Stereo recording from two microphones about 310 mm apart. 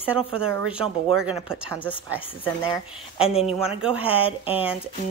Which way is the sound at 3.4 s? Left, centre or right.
Centre.